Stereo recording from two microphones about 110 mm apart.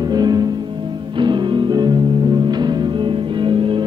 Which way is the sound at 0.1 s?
40° right (ahead or behind).